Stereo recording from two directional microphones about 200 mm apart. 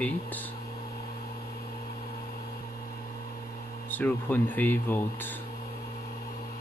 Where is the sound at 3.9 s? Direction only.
10° left (ahead or behind).